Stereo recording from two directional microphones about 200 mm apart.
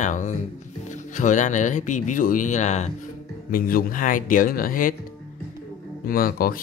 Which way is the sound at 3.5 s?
45° left (ahead or behind).